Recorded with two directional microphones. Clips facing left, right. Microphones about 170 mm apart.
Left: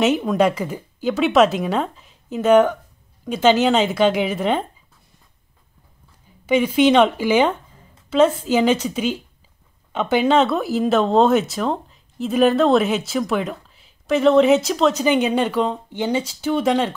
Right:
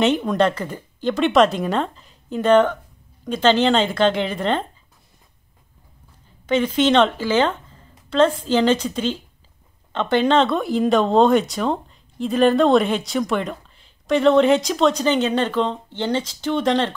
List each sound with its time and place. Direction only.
0.0 s speech: 5° left (ahead or behind)
6.4 s speech: 10° left (ahead or behind)